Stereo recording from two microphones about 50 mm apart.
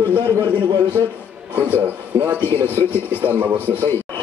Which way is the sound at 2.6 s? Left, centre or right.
Left.